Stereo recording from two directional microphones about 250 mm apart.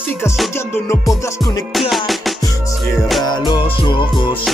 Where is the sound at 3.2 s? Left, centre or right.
Centre.